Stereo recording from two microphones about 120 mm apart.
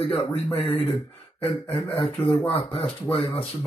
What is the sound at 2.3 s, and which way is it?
Speech, 15° left (ahead or behind).